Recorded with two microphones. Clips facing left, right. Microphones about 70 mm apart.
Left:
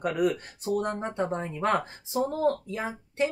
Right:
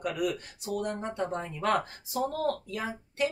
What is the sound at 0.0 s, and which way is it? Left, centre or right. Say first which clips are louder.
Speech: left 5 dB; left.